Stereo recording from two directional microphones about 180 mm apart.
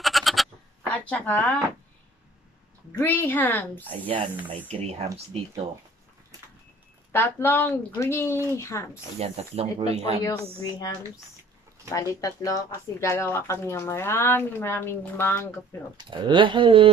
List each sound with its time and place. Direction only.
0.0 s bleat: centre (ahead or behind)
3.0 s speech: 10° left (ahead or behind)
4.8 s speech: 35° right (ahead or behind)
7.1 s speech: 15° left (ahead or behind)
9.2 s speech: 35° right (ahead or behind)
10.2 s a woman's voice: 20° left (ahead or behind)
11.9 s speech: 15° left (ahead or behind)
16.0 s speech: 25° right (ahead or behind)